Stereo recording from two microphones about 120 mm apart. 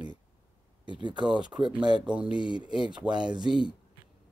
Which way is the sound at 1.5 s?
25° right (ahead or behind).